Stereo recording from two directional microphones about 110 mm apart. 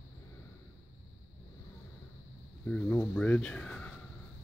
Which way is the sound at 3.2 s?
10° left (ahead or behind).